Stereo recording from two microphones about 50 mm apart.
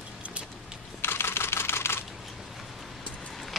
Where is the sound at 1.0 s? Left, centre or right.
Left.